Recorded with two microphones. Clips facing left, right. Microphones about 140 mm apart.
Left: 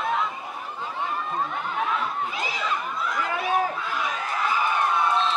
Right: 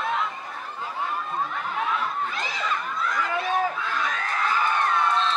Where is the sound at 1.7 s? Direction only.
Centre (ahead or behind).